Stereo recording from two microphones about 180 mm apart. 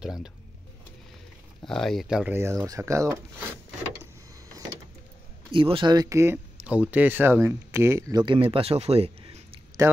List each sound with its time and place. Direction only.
0.0 s speech: 5° right (ahead or behind)
1.7 s speech: centre (ahead or behind); by 3.2 s 15° right (ahead or behind)
5.5 s speech: 30° right (ahead or behind)